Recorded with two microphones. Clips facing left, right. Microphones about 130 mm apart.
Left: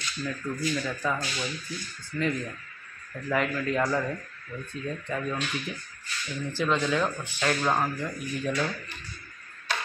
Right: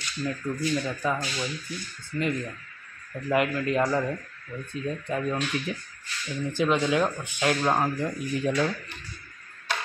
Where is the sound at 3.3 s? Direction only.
10° right (ahead or behind).